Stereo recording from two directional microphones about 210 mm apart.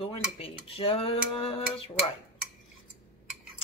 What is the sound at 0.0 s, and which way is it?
Cutlery, 25° left (ahead or behind).